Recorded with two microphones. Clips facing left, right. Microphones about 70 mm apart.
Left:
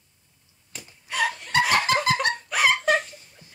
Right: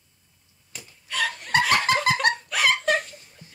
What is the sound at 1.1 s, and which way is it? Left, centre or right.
Laughter, centre.